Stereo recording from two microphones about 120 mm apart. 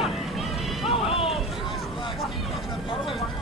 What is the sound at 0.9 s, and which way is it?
Music, 50° left (ahead or behind).